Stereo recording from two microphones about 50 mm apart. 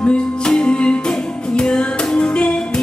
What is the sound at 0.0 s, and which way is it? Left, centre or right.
Music, centre.